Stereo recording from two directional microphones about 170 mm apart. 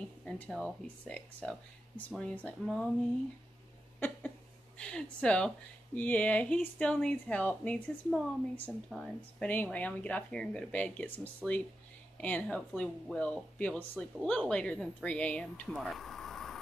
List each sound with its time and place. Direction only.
0.2 s speech: 5° left (ahead or behind)
4.7 s speech: 5° left (ahead or behind)